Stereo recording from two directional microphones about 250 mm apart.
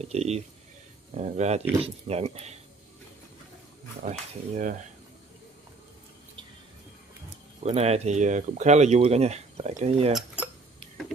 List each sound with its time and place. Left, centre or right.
0.0 s speech: right
4.0 s speech: right
7.6 s speech: right